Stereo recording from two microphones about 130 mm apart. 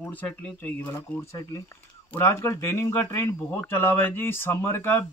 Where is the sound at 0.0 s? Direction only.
15° left (ahead or behind).